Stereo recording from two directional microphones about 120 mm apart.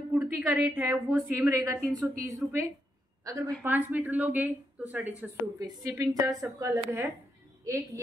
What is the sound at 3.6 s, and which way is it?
Speech, 15° right (ahead or behind).